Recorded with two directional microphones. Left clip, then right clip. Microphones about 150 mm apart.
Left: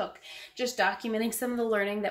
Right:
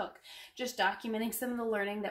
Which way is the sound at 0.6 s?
10° left (ahead or behind).